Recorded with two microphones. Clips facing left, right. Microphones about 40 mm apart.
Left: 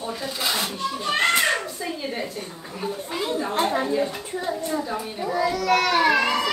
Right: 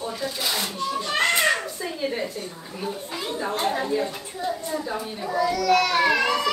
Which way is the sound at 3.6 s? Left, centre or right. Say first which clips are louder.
Even; centre.